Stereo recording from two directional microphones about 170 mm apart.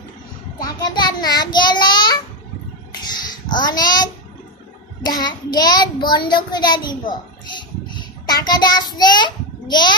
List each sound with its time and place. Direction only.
0.7 s child singing: 25° left (ahead or behind)
3.5 s a child's voice: 25° left (ahead or behind)